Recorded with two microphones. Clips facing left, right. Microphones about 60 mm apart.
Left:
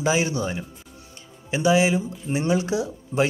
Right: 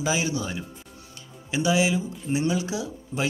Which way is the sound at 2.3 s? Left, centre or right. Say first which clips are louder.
Left 4 dB; left.